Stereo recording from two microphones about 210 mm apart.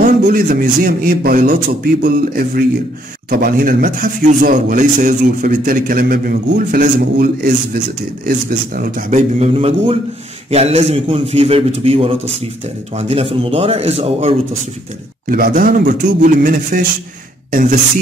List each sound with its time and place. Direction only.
0.0 s a man's voice: 40° right (ahead or behind)
8.5 s a man's voice: 40° right (ahead or behind)
15.2 s a man's voice: 45° right (ahead or behind)